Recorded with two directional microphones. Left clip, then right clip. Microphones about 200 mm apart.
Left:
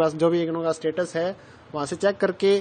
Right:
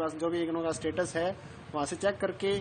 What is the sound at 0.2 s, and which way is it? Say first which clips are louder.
A man's voice: left 9 dB; 35° left (ahead or behind).